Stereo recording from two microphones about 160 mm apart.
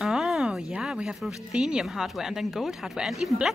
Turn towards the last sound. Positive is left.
turn(degrees=0)  # may be behind; listen again after turning